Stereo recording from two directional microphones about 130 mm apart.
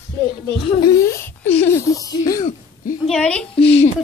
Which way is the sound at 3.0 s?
5° left (ahead or behind).